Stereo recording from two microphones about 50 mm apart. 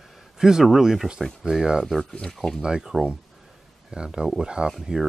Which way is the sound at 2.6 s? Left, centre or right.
Centre.